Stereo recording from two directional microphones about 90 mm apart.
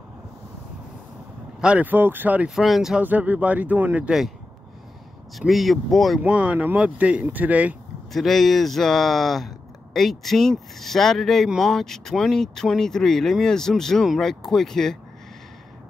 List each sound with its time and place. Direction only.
1.6 s speech: 15° right (ahead or behind)
2.5 s speech: centre (ahead or behind)
3.0 s speech: 20° right (ahead or behind)
5.5 s speech: centre (ahead or behind)
6.2 s speech: 15° right (ahead or behind)
8.1 s speech: centre (ahead or behind)